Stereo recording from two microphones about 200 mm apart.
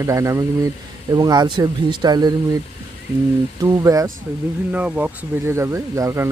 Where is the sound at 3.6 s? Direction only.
15° right (ahead or behind).